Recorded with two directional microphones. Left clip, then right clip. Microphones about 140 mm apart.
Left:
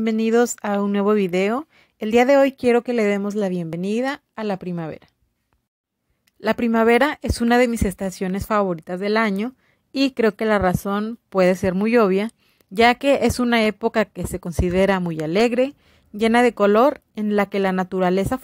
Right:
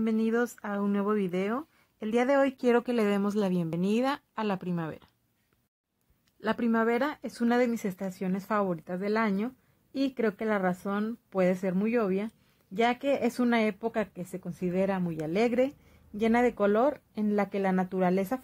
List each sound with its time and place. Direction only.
0.0 s speech: 40° left (ahead or behind)
6.4 s a woman's voice: 40° left (ahead or behind)
11.8 s speech: 50° left (ahead or behind); by 13.7 s 30° left (ahead or behind)
13.7 s speech: 45° left (ahead or behind)
15.1 s speech: 35° left (ahead or behind)